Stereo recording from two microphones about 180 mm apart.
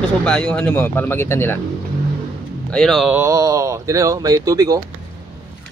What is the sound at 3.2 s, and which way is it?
Speech, 15° right (ahead or behind).